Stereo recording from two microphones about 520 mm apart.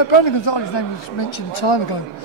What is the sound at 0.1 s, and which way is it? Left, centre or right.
A man's voice, left.